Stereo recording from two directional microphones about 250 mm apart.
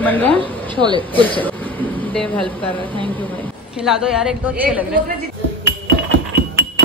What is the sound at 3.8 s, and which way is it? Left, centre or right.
A man's voice, centre.